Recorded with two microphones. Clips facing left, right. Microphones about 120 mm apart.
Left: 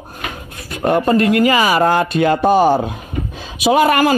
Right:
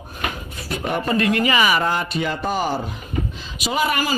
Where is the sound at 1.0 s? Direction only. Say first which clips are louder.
Left 6 dB; 45° left (ahead or behind).